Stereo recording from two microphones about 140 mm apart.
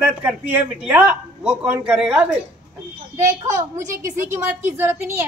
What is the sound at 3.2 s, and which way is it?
A woman's voice, 20° right (ahead or behind).